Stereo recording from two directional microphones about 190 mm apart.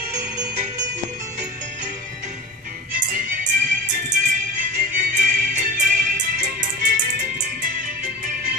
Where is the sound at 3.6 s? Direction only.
45° right (ahead or behind).